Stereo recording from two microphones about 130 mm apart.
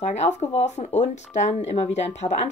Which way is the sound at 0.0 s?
60° left (ahead or behind).